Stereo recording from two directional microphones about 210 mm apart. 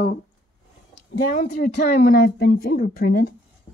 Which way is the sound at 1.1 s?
40° left (ahead or behind).